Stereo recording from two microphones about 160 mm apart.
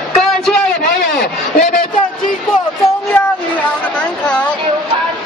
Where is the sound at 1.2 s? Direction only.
80° left.